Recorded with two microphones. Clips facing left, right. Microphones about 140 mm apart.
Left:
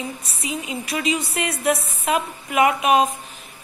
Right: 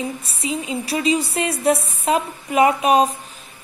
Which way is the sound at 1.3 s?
30° right (ahead or behind).